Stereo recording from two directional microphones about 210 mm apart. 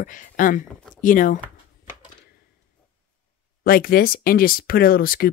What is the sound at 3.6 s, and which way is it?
Speech, 45° left (ahead or behind).